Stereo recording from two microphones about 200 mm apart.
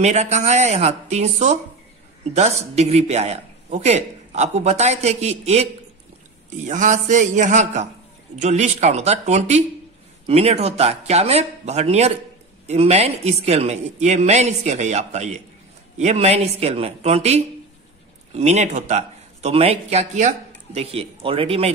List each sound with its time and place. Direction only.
0.0 s a man's voice: 35° right (ahead or behind)